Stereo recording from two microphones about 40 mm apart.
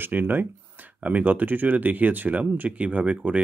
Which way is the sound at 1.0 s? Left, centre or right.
Right.